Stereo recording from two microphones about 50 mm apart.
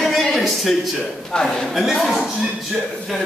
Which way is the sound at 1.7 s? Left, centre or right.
Centre.